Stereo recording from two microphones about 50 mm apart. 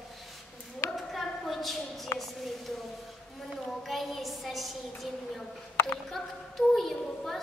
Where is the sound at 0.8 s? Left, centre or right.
Left.